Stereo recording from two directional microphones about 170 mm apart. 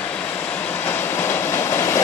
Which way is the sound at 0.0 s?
10° left (ahead or behind).